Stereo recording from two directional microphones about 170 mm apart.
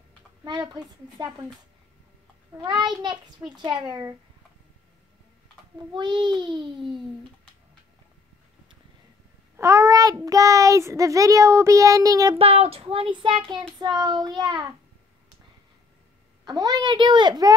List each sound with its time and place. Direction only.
0.4 s a child's voice: 25° right (ahead or behind)
2.6 s a child's voice: 25° right (ahead or behind)
5.9 s a child's voice: 25° right (ahead or behind)
9.6 s a child's voice: 20° right (ahead or behind)
12.4 s child singing: 35° right (ahead or behind)
13.9 s a child's voice: 25° right (ahead or behind)
16.4 s a child's voice: 25° right (ahead or behind)